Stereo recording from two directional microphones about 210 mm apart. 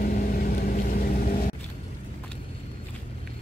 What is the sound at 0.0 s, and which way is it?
Vehicle, 45° left (ahead or behind).